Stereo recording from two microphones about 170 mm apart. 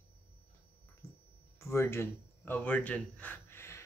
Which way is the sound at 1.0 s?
20° left (ahead or behind).